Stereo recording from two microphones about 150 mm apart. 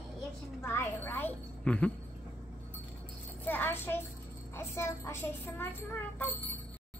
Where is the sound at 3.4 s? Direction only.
10° left (ahead or behind).